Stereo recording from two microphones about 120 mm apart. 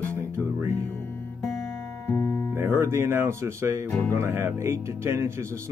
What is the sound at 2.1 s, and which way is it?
Music, 15° left (ahead or behind).